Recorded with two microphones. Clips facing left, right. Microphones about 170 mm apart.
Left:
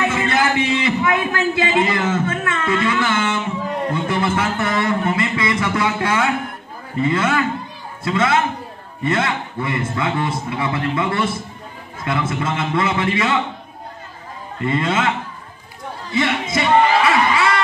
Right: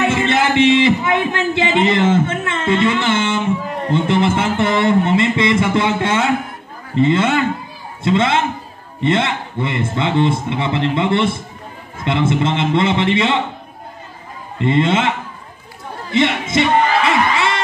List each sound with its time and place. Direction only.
0.1 s a sound: 25° right (ahead or behind)
7.0 s a man's voice: 25° right (ahead or behind)
14.6 s a man's voice: 25° right (ahead or behind)
16.1 s music: 25° right (ahead or behind)